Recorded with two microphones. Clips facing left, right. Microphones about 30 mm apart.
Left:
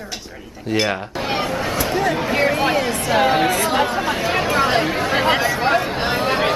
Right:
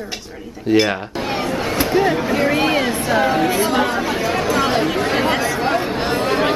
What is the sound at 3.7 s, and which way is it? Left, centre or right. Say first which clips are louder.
A woman's voice: right 1 dB; centre.